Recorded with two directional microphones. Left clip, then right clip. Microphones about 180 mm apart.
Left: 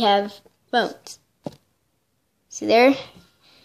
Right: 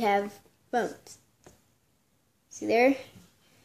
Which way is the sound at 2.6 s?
Centre (ahead or behind).